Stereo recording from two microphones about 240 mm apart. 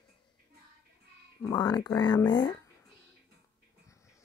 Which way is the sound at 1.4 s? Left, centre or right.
Centre.